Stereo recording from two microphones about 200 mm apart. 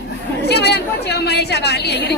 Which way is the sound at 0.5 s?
55° left (ahead or behind).